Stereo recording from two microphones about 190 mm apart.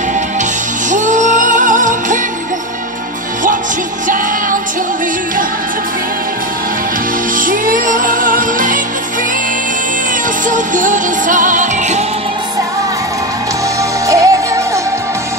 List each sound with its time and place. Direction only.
0.8 s music: 40° right (ahead or behind)
7.3 s music: 45° right (ahead or behind)
10.5 s music: 45° right (ahead or behind)
14.0 s music: 15° right (ahead or behind)